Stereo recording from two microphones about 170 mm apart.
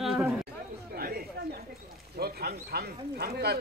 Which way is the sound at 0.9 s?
60° right (ahead or behind).